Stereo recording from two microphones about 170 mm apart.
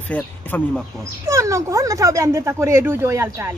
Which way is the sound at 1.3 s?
20° right (ahead or behind).